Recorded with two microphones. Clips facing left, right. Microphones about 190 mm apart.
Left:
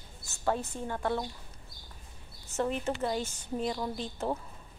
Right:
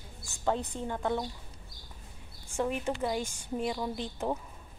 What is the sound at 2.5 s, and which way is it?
A woman's voice, 10° right (ahead or behind).